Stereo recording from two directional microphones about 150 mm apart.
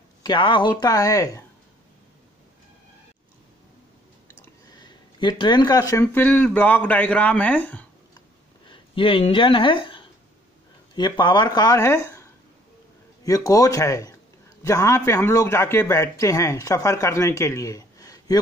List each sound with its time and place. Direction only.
0.2 s speech: 30° left (ahead or behind)
4.7 s speech: 30° left (ahead or behind); by 7.8 s 10° left (ahead or behind)
8.6 s speech: 35° left (ahead or behind)